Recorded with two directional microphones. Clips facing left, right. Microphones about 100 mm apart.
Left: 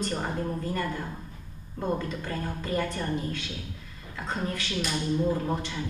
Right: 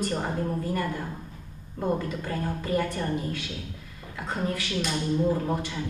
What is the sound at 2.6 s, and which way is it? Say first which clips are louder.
Speech: right 2 dB; 10° right (ahead or behind).